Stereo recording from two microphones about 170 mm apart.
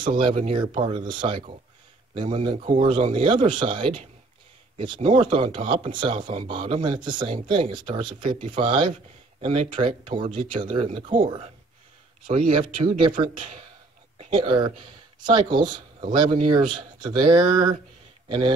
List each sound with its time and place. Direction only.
0.0 s speech: 30° right (ahead or behind)